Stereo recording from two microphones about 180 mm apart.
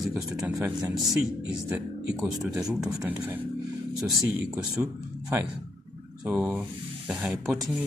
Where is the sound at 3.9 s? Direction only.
20° right (ahead or behind).